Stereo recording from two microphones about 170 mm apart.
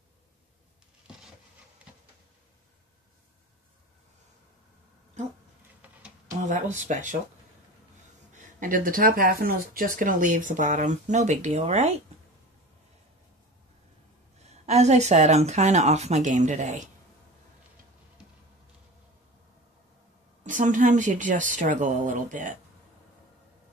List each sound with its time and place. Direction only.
6.5 s speech: 45° right (ahead or behind)
8.5 s speech: 50° right (ahead or behind)
14.4 s speech: 40° right (ahead or behind)
20.4 s speech: 50° right (ahead or behind)